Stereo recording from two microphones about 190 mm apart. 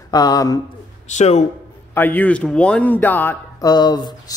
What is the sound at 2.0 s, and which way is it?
Speech, 10° left (ahead or behind).